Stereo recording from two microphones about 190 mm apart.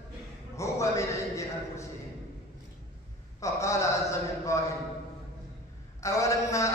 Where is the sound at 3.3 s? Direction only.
15° left (ahead or behind).